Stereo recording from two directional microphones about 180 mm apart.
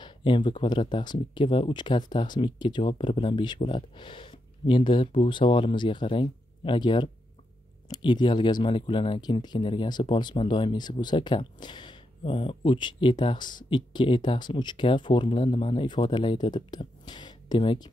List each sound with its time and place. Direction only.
0.0 s speech: 25° left (ahead or behind)